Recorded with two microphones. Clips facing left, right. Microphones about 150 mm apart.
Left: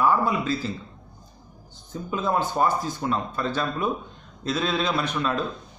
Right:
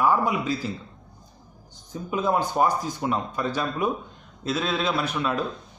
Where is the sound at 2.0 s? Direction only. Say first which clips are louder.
Right 1 dB; 15° right (ahead or behind).